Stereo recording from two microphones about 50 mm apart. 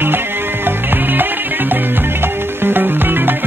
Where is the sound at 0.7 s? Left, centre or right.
Right.